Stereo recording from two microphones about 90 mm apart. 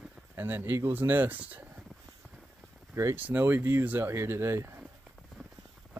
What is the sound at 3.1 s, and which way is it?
Speech, 20° right (ahead or behind).